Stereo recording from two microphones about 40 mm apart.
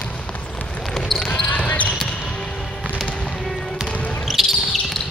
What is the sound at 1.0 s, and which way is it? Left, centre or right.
Basketball bounce, centre.